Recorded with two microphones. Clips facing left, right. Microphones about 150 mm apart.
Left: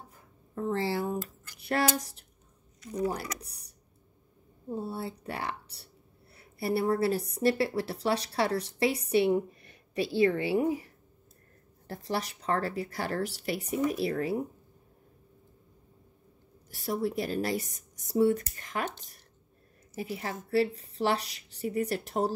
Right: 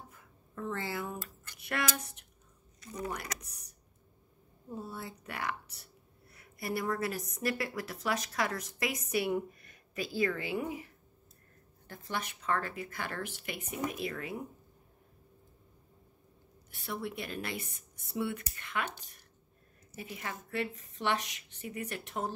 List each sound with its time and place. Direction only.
0.1 s speech: 35° left (ahead or behind)
11.9 s speech: 35° left (ahead or behind)
16.7 s speech: 35° left (ahead or behind)
20.0 s speech: 35° left (ahead or behind)